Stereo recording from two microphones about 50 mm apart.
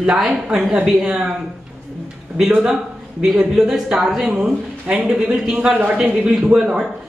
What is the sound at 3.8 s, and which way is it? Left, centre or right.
Speech, centre.